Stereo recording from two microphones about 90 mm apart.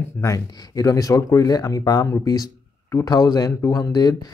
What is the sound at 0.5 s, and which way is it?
Speech, 45° left (ahead or behind).